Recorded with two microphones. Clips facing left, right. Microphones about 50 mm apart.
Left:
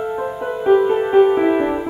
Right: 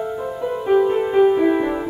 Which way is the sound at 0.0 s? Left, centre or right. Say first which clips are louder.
Left 2 dB; left.